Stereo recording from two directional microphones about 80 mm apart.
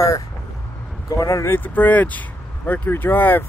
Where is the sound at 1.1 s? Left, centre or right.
Left.